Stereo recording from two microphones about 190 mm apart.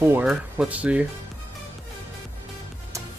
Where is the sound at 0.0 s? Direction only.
10° right (ahead or behind).